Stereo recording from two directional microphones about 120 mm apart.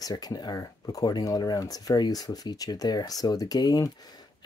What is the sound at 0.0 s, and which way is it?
Speech, 35° left (ahead or behind).